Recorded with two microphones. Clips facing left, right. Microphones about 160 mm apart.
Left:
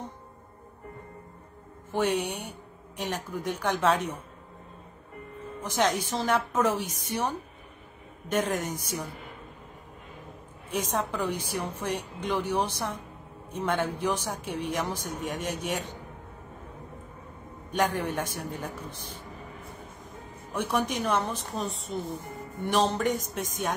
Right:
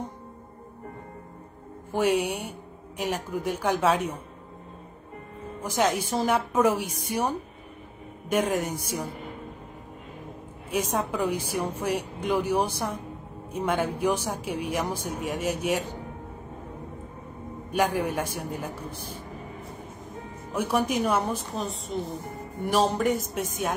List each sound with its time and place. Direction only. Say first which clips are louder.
1.9 s speech: right 3 dB; 10° right (ahead or behind)
5.6 s speech: right 2 dB; 10° right (ahead or behind)
10.7 s speech: right 2 dB; 10° right (ahead or behind)
17.6 s speech: right 2 dB; 10° right (ahead or behind)
20.5 s a woman's voice: right 3 dB; 10° right (ahead or behind)